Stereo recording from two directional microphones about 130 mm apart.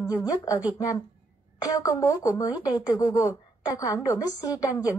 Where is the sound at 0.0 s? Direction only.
30° left (ahead or behind).